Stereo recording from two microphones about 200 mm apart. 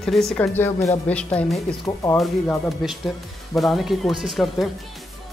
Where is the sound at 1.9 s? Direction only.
25° left (ahead or behind).